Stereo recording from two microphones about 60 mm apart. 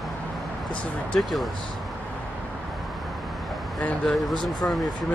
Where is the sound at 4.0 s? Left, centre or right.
Centre.